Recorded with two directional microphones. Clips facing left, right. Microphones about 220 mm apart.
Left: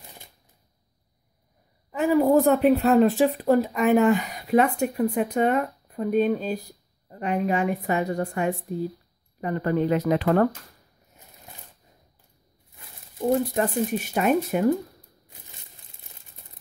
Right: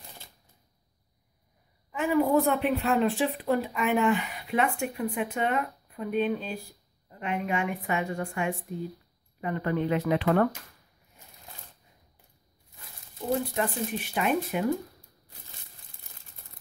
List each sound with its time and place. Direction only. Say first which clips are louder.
1.9 s a woman's voice: left 5 dB; 40° left (ahead or behind)
13.6 s speech: left 6 dB; 45° left (ahead or behind)